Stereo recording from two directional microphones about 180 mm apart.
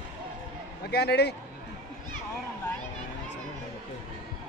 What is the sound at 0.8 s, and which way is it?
Speech, 65° left (ahead or behind).